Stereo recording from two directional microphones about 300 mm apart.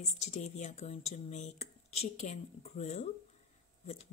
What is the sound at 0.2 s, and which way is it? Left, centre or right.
Speech, left.